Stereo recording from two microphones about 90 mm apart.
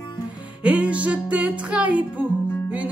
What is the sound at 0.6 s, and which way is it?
Music, 15° right (ahead or behind).